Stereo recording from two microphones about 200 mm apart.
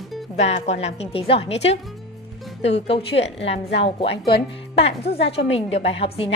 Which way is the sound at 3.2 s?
60° left (ahead or behind).